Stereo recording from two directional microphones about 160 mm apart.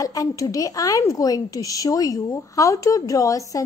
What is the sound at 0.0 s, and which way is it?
Speech, 20° left (ahead or behind).